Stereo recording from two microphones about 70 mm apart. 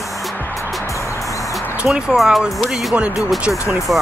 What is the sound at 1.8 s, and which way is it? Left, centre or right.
Speech, centre.